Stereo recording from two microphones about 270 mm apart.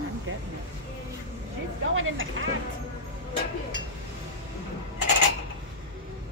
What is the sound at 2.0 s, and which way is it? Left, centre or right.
Speech, right.